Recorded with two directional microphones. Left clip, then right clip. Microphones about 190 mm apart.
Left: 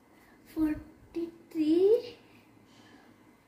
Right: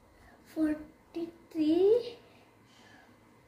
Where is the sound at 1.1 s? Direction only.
15° right (ahead or behind).